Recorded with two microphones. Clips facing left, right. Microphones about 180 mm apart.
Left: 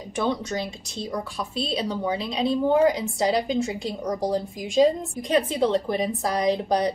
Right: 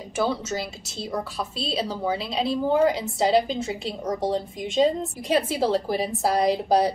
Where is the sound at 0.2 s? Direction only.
5° right (ahead or behind).